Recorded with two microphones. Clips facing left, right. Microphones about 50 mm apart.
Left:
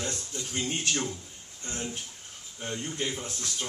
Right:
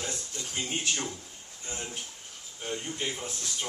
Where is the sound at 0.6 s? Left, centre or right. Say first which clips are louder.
Left 2 dB; centre.